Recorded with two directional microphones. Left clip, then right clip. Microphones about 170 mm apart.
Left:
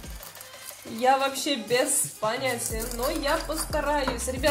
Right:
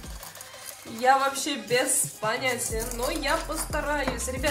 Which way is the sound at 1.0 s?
20° left (ahead or behind).